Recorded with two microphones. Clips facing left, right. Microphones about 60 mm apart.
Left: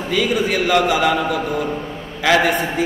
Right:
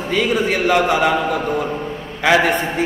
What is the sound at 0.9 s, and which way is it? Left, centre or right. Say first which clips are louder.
A man's voice: right 1 dB; centre.